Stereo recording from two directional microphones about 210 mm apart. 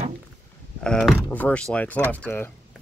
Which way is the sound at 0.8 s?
5° left (ahead or behind).